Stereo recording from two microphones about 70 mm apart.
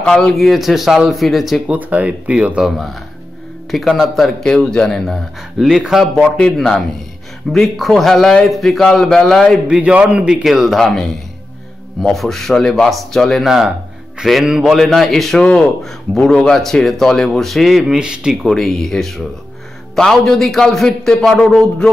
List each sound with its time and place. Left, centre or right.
0.0 s speech: centre
1.7 s speech: right
2.6 s speech: centre
6.1 s a man's voice: centre
9.8 s a man's voice: centre
14.8 s speech: centre
18.5 s a man's voice: centre